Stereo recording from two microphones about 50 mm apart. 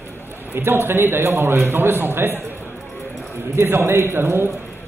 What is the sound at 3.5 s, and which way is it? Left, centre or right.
Speech, right.